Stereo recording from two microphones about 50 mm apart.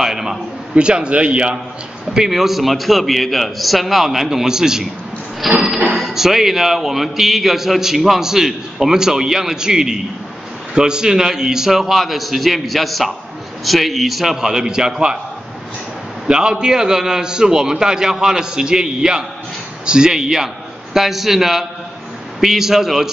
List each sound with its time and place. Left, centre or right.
0.0 s a sound: centre
0.7 s a man's voice: centre
2.0 s a man's voice: centre
5.4 s a man's voice: centre
16.3 s a man's voice: centre